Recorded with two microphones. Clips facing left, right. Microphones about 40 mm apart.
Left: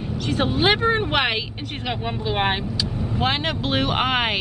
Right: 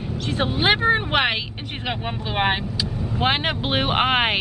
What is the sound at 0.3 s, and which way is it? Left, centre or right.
Speech, centre.